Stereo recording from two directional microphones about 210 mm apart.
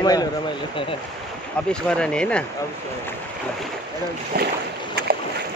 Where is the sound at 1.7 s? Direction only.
5° left (ahead or behind).